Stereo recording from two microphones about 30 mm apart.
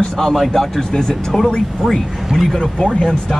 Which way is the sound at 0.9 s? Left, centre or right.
Left.